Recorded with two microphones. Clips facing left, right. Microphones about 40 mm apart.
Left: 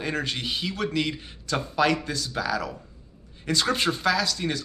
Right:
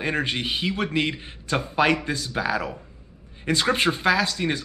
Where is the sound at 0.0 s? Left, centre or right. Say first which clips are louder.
Right 3 dB; right.